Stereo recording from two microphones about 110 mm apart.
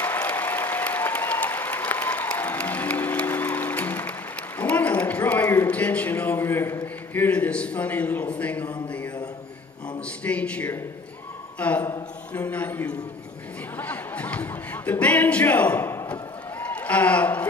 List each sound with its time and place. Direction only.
0.0 s applause: 15° left (ahead or behind)
4.6 s a sound: 15° left (ahead or behind)
10.2 s speech: 10° left (ahead or behind)
13.7 s music: 15° left (ahead or behind)